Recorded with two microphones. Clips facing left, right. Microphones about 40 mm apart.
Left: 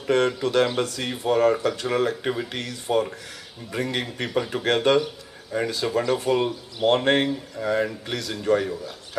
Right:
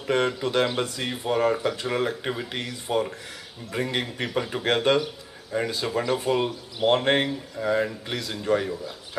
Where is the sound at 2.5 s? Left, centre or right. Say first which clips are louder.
Left 2 dB; centre.